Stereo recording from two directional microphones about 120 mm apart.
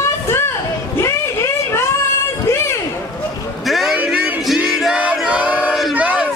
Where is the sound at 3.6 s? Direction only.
Centre (ahead or behind).